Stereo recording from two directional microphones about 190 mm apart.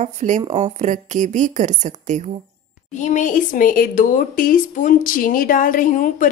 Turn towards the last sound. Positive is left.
turn(degrees=45)  # may be behind; listen again after turning